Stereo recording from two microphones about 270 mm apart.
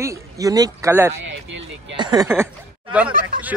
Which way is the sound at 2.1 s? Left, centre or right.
Centre.